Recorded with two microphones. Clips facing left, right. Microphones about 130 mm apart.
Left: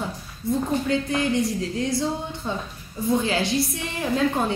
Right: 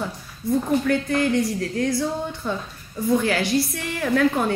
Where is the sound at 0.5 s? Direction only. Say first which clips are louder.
Right 3 dB; 20° left (ahead or behind).